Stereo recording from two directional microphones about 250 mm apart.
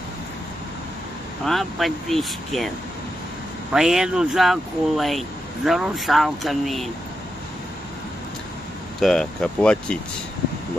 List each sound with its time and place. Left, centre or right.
1.4 s speech: centre
3.7 s speech: centre
9.0 s speech: centre